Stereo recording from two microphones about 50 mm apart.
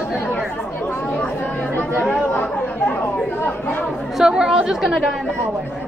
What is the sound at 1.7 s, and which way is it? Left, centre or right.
Chatter, left.